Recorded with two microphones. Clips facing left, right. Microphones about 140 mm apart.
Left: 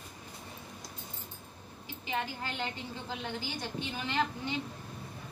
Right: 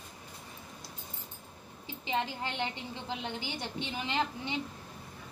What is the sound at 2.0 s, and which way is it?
A woman's voice, 20° right (ahead or behind).